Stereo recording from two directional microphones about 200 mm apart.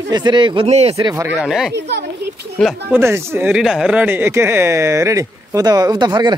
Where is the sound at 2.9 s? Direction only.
15° right (ahead or behind).